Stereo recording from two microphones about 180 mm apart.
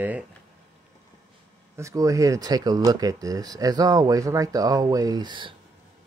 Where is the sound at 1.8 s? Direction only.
15° right (ahead or behind).